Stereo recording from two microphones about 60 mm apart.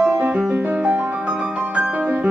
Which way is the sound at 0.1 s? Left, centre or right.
Right.